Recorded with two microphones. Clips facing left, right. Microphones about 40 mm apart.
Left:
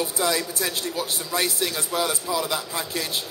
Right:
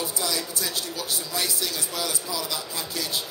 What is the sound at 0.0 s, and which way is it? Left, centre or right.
Speech, left.